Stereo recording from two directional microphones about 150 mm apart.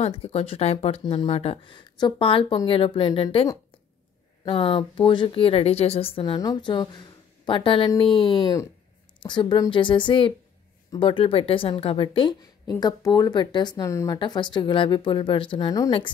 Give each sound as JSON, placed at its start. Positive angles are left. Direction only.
{"t": 0.0, "sound": "speech", "side_deg": 40}
{"t": 4.5, "sound": "a woman's voice", "side_deg": 35}